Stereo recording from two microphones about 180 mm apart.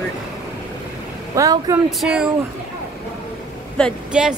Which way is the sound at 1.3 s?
20° right (ahead or behind).